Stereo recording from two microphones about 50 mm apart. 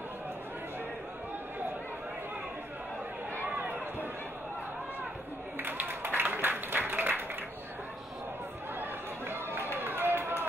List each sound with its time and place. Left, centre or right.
3.5 s run: right
5.6 s a sound: right
9.3 s run: right